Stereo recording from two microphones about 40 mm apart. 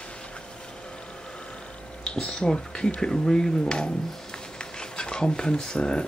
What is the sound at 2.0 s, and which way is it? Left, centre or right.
Speech, centre.